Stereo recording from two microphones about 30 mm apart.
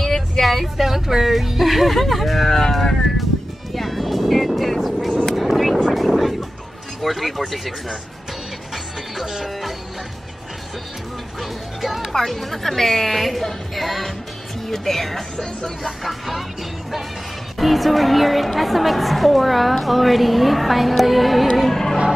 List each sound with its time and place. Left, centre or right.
0.0 s speech: centre
3.7 s vehicle: centre
5.9 s a sound: centre
7.0 s a woman's voice: centre
9.2 s music: centre
11.8 s music: centre
12.1 s a woman's voice: centre
15.3 s a woman's voice: centre
16.0 s speech: centre
17.6 s a woman's voice: centre
21.6 s speech: centre